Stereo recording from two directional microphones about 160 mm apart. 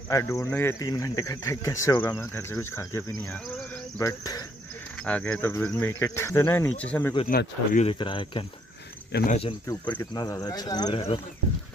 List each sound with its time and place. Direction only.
0.1 s speech: 20° left (ahead or behind)
5.0 s speech: 10° left (ahead or behind)
7.2 s speech: 60° left (ahead or behind)
7.8 s speech: 35° left (ahead or behind)
9.7 s speech: 25° left (ahead or behind)